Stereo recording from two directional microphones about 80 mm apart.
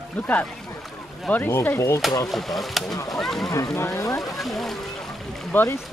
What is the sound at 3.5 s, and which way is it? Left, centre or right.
Speech, left.